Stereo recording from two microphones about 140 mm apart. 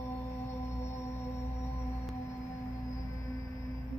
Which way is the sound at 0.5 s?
20° left (ahead or behind).